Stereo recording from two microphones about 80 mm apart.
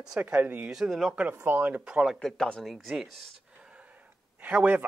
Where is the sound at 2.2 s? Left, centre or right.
Centre.